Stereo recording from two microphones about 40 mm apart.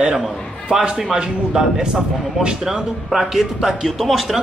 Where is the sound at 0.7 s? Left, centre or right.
Centre.